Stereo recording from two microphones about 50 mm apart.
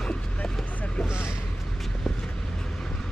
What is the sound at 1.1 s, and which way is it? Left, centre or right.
Vehicle, left.